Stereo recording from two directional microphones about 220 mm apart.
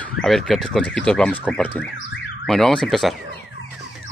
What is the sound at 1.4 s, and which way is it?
Car alarm, 5° left (ahead or behind).